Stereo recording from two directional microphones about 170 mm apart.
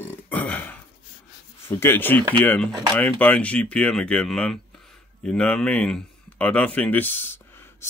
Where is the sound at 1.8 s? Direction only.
10° left (ahead or behind).